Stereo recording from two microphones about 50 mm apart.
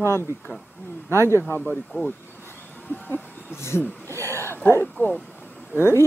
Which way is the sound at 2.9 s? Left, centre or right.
Left.